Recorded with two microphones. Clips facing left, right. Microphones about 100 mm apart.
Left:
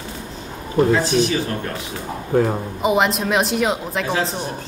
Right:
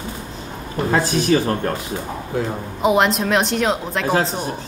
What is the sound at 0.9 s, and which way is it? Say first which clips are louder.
Speech: right 1 dB; 45° right (ahead or behind).